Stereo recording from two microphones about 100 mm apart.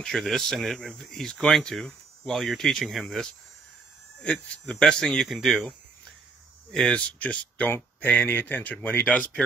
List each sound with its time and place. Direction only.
0.0 s speech: 5° left (ahead or behind)
6.7 s speech: 5° left (ahead or behind)